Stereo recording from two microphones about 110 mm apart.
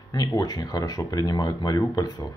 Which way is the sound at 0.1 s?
35° left (ahead or behind).